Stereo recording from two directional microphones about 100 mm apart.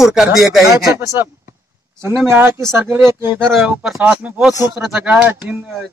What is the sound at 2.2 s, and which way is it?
Speech, 25° right (ahead or behind).